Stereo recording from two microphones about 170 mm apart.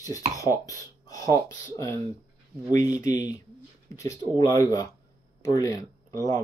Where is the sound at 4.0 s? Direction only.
20° left (ahead or behind).